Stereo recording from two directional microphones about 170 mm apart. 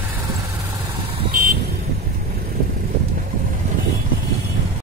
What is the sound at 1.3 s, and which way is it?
Vehicle, 50° right (ahead or behind).